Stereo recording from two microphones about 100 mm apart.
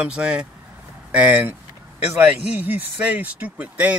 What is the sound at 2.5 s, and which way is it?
Speech, 15° right (ahead or behind).